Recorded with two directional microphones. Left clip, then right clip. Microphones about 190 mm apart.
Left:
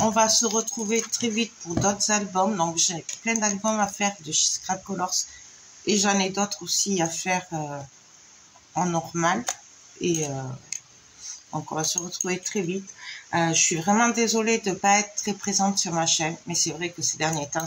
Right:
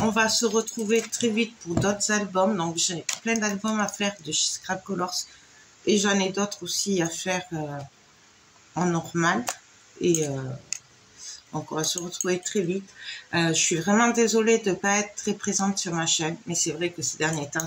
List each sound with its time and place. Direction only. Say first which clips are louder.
0.0 s speech: left 2 dB; 10° left (ahead or behind)
8.7 s speech: left 1 dB; 15° left (ahead or behind)
11.7 s speech: even; 10° left (ahead or behind)